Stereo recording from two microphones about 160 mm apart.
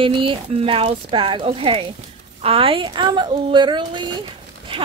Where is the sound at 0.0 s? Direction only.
30° right (ahead or behind).